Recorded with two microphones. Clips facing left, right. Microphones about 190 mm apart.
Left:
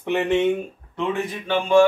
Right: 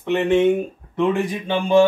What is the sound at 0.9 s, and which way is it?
Speech, 15° right (ahead or behind).